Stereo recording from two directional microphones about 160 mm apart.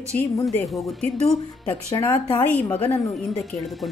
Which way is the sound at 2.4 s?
10° left (ahead or behind).